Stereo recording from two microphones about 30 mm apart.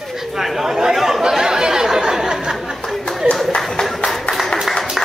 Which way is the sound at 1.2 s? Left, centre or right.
Centre.